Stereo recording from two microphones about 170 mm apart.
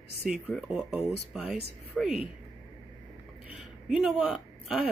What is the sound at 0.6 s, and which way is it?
Speech, centre (ahead or behind).